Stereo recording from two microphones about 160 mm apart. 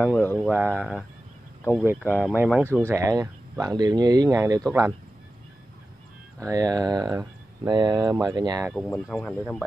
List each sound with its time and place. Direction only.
0.1 s speech: 15° left (ahead or behind)
0.5 s speech: 10° right (ahead or behind)
2.9 s speech: 20° right (ahead or behind)
6.4 s speech: 25° right (ahead or behind)
8.7 s speech: 10° left (ahead or behind)